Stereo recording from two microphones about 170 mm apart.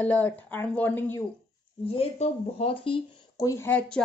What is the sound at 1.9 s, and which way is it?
Speech, 35° left (ahead or behind).